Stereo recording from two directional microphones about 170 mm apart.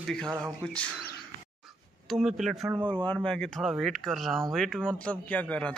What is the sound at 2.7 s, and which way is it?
Speech, 30° right (ahead or behind).